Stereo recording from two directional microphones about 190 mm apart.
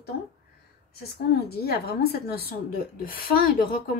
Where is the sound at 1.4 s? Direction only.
55° left (ahead or behind).